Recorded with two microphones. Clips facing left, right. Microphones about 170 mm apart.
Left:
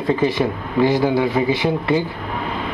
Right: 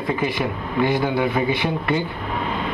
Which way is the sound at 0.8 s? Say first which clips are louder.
Left 4 dB; 30° left (ahead or behind).